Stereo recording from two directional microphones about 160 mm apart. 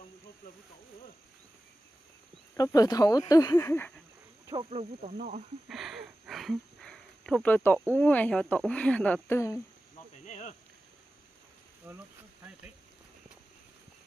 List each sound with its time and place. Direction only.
2.5 s speech: 20° left (ahead or behind)
4.6 s speech: 40° right (ahead or behind)
5.1 s speech: 65° right (ahead or behind)
5.7 s a sound: centre (ahead or behind)
7.9 s speech: 10° left (ahead or behind)
10.1 s insect: 50° left (ahead or behind)
11.9 s speech: 15° right (ahead or behind)